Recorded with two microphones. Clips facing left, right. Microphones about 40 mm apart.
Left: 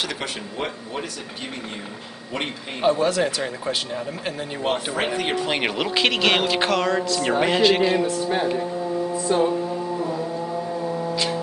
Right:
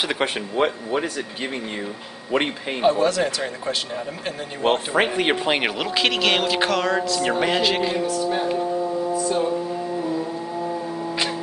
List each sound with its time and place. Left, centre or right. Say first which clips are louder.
0.1 s speech: right 6 dB; right
2.8 s speech: right 1 dB; centre
4.6 s speech: right 4 dB; right
5.7 s speech: left 1 dB; centre
8.1 s speech: even; centre
9.1 s mantra: left 3 dB; centre